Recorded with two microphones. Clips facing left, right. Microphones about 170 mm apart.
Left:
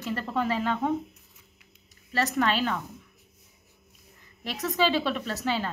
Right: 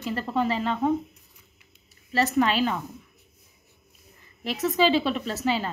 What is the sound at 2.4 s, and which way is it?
Speech, 10° right (ahead or behind).